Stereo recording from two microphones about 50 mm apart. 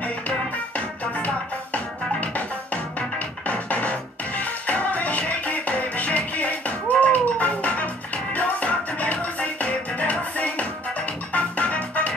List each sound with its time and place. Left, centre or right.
0.7 s music: left